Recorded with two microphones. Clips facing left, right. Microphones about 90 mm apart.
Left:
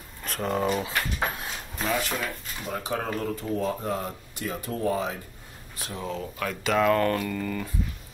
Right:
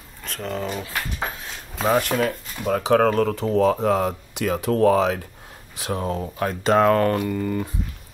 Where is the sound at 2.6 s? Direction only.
90° right.